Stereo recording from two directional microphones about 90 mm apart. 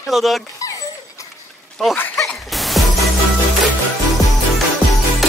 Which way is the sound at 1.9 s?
20° left (ahead or behind).